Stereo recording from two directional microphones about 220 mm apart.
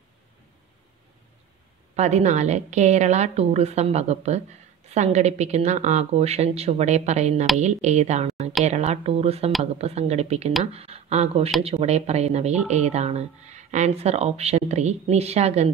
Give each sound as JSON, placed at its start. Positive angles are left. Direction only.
{"t": 2.0, "sound": "a woman's voice", "side_deg": -30}